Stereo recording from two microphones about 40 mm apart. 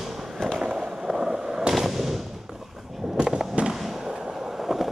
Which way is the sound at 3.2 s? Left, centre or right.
Centre.